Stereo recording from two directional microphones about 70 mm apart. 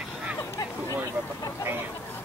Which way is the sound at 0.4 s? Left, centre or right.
Left.